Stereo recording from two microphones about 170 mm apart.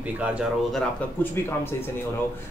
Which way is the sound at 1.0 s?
10° left (ahead or behind).